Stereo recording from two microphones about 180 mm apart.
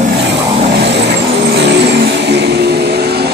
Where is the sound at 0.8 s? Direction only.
70° right (ahead or behind).